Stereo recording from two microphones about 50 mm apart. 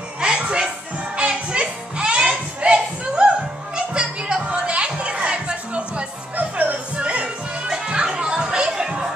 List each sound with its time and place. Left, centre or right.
0.2 s music: centre